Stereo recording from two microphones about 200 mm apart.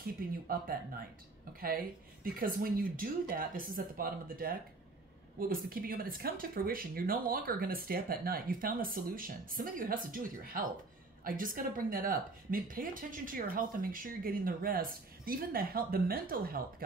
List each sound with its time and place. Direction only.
0.0 s speech: 50° right (ahead or behind)
2.3 s speech: 45° right (ahead or behind)